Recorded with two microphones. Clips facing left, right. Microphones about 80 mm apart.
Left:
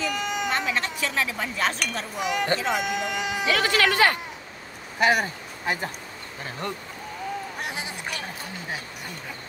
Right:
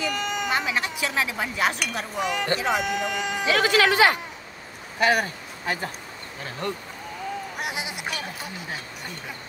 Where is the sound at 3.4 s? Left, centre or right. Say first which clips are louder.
Right 2 dB; centre.